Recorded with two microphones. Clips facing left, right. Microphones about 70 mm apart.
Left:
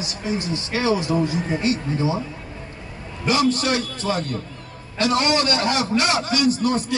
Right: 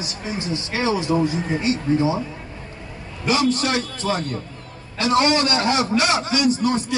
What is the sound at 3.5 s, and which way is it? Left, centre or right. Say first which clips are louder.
Speech: even; right.